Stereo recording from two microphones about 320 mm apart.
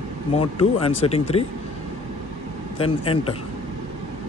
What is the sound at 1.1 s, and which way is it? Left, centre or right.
Speech, centre.